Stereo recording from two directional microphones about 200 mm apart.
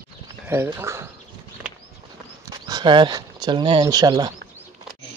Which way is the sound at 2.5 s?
20° right (ahead or behind).